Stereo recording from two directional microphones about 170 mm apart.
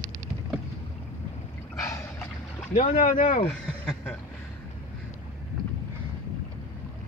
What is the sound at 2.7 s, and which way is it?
Speech, 45° left (ahead or behind).